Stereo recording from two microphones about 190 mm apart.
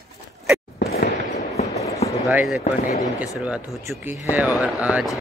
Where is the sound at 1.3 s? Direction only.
35° left (ahead or behind).